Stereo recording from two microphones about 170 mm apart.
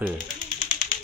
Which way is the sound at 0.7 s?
50° left (ahead or behind).